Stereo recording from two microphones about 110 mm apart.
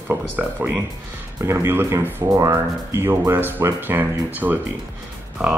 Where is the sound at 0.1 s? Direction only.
15° right (ahead or behind).